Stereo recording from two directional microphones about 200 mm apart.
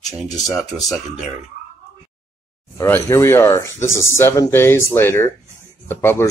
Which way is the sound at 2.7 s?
15° left (ahead or behind).